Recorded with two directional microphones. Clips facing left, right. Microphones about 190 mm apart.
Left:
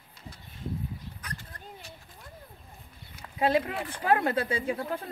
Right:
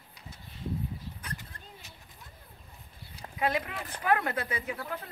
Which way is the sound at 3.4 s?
30° left (ahead or behind).